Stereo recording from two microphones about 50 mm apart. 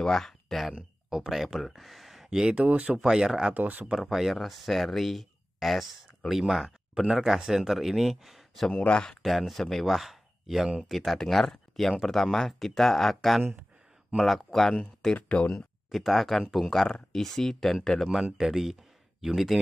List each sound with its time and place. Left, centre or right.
0.0 s speech: centre
2.5 s speech: right
3.0 s speech: centre
3.5 s speech: right
4.1 s speech: centre
8.7 s speech: left
9.0 s speech: centre
11.7 s a sound: centre
12.0 s speech: centre
15.1 s speech: left
15.9 s speech: centre
18.4 s speech: centre